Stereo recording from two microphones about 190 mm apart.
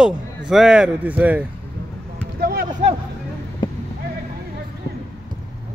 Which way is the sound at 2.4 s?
50° right (ahead or behind).